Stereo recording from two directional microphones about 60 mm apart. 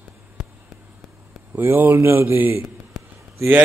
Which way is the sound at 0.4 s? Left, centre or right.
Centre.